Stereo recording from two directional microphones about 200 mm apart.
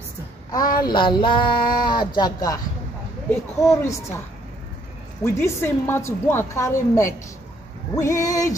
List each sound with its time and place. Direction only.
0.8 s a sound: 20° left (ahead or behind)
3.3 s a child's voice: 15° left (ahead or behind)
5.2 s a child's voice: 10° left (ahead or behind)